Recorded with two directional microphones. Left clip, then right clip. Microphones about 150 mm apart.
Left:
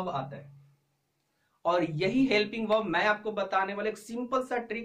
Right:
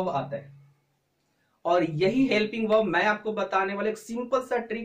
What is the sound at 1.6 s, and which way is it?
Speech, 25° left (ahead or behind).